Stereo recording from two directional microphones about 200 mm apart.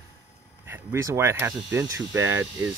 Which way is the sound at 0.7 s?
15° right (ahead or behind).